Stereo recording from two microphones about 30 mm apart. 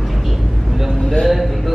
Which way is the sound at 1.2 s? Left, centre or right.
Centre.